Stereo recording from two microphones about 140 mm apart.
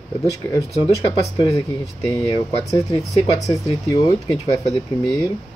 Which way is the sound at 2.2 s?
25° left (ahead or behind).